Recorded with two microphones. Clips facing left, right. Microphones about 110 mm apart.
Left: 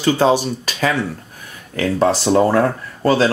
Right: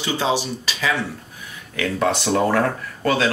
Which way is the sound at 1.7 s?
35° left (ahead or behind).